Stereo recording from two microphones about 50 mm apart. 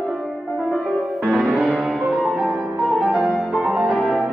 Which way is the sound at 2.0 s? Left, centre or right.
Centre.